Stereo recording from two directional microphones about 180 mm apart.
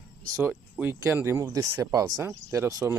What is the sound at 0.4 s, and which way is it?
Speech, 10° right (ahead or behind).